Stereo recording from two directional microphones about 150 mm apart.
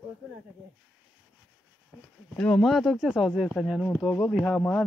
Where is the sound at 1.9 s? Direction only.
5° right (ahead or behind).